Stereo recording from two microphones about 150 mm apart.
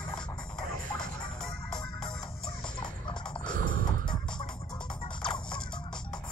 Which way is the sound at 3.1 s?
30° left (ahead or behind).